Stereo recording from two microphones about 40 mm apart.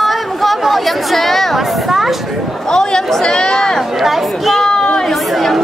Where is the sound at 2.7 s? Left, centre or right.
Centre.